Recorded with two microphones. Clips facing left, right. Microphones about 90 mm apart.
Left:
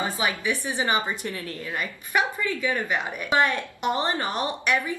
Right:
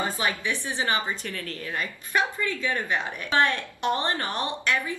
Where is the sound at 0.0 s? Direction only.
15° left (ahead or behind).